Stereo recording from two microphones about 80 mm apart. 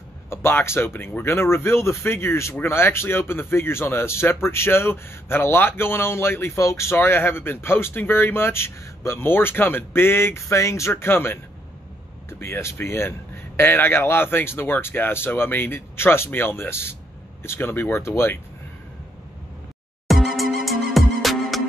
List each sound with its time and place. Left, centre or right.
0.3 s speech: left
20.1 s music: centre